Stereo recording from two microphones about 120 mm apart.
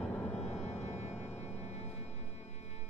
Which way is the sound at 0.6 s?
70° left (ahead or behind).